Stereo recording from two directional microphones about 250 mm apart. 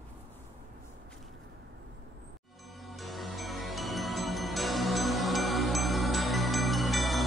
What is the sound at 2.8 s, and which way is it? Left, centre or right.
Music, centre.